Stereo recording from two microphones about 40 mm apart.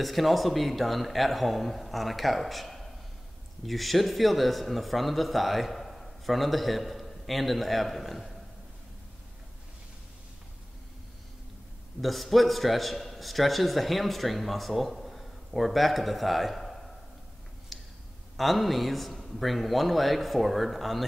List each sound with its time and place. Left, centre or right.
0.0 s a man's voice: centre
12.0 s a man's voice: centre
17.7 s a sound: centre
18.3 s a man's voice: centre